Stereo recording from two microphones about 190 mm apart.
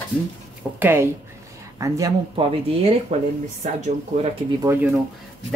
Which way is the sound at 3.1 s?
35° right (ahead or behind).